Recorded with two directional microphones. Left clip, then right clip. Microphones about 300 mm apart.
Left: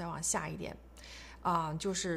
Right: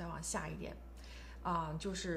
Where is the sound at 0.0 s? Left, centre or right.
Left.